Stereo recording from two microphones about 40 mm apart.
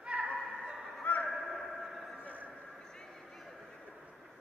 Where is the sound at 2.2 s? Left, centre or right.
Right.